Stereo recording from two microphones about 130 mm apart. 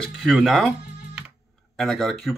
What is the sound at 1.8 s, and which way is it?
Speech, centre (ahead or behind).